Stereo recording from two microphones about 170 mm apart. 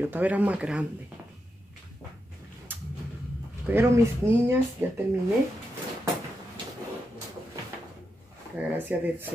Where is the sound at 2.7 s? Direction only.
10° right (ahead or behind).